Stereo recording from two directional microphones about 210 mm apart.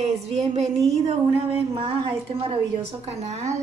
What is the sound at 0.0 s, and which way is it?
Speech, 30° right (ahead or behind).